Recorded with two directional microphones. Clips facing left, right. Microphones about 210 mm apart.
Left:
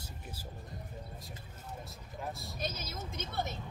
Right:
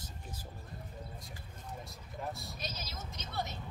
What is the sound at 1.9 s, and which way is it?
Speech, centre (ahead or behind).